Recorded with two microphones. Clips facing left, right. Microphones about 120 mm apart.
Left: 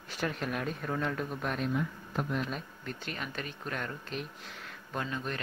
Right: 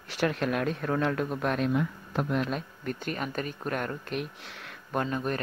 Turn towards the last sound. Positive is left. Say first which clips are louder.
# right 6 dB
turn(degrees=-45)  # may be behind; listen again after turning